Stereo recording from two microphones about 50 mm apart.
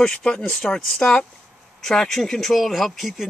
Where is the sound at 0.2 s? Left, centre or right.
Left.